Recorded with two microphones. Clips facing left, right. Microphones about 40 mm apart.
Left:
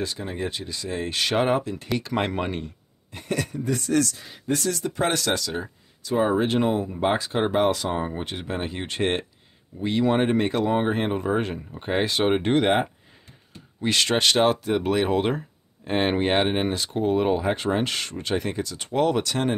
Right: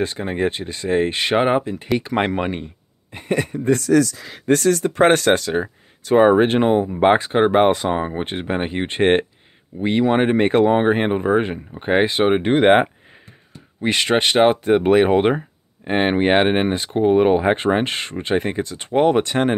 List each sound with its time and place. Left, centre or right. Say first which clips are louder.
0.0 s speech: right 8 dB; right
4.5 s speech: right 9 dB; right
10.0 s speech: right 4 dB; right
10.3 s speech: right 7 dB; right; by 12.6 s centre
12.6 s speech: right 8 dB; right
13.7 s speech: right 4 dB; right